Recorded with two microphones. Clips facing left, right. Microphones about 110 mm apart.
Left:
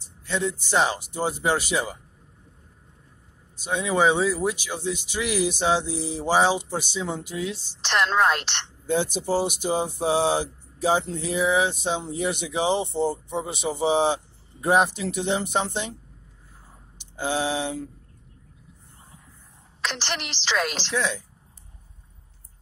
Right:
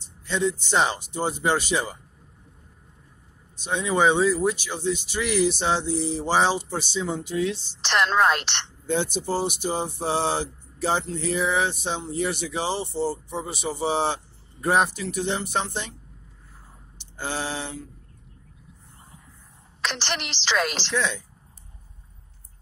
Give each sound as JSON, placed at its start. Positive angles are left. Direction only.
{"t": 0.2, "sound": "speech", "side_deg": 0}
{"t": 3.5, "sound": "speech", "side_deg": 5}
{"t": 7.8, "sound": "a woman's voice", "side_deg": -85}
{"t": 8.8, "sound": "speech", "side_deg": 5}
{"t": 17.0, "sound": "a sound", "side_deg": 15}
{"t": 19.8, "sound": "a woman's voice", "side_deg": -80}
{"t": 20.9, "sound": "speech", "side_deg": 5}